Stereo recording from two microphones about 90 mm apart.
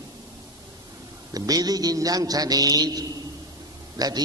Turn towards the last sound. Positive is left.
turn(degrees=-45)  # may be behind; listen again after turning